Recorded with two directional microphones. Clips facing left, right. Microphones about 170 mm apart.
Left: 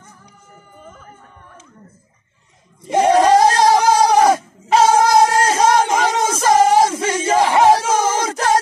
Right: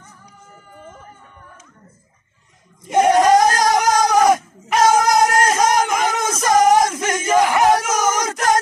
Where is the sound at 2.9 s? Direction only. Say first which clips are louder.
Left 1 dB; 30° left (ahead or behind).